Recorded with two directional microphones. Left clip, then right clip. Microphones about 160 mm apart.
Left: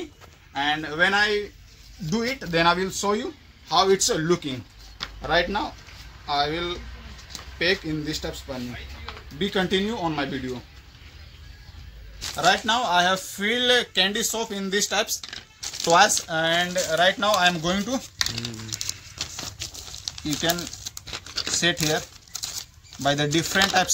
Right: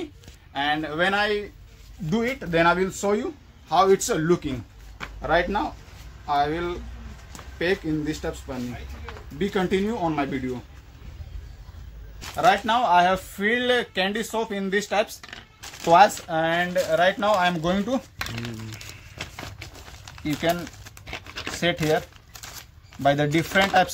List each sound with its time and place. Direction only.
0.7 s speech: 25° right (ahead or behind)
2.0 s speech: 10° right (ahead or behind)
4.5 s a sound: centre (ahead or behind)
6.2 s speech: 10° right (ahead or behind)
7.3 s a sound: 10° right (ahead or behind)
8.0 s speech: centre (ahead or behind)
12.4 s speech: 5° right (ahead or behind); by 13.8 s 25° right (ahead or behind)
13.9 s speech: 10° right (ahead or behind); by 18.0 s 35° right (ahead or behind)
19.1 s a sound: 10° right (ahead or behind)
20.4 s speech: 20° right (ahead or behind)
21.1 s a sound: 25° right (ahead or behind)
23.0 s speech: 25° right (ahead or behind)